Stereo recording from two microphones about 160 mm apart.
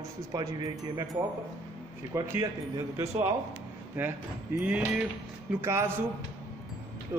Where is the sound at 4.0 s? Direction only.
10° right (ahead or behind).